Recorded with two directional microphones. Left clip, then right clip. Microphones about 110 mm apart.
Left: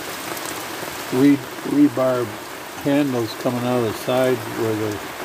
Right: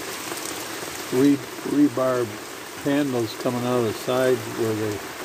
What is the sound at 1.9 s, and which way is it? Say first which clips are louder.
Speech: left 3 dB; centre (ahead or behind).